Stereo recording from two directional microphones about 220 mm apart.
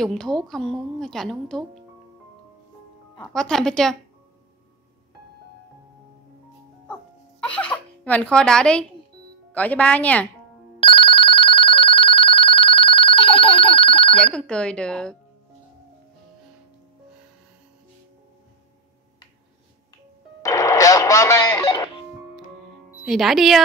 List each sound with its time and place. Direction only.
0.0 s a woman's voice: centre (ahead or behind)
3.2 s a woman's voice: 5° left (ahead or behind)
7.5 s speech: 5° left (ahead or behind)
10.8 s telephone bell ringing: 25° left (ahead or behind)
14.1 s a woman's voice: 5° left (ahead or behind)
20.4 s music: 15° left (ahead or behind)
23.0 s a woman's voice: centre (ahead or behind)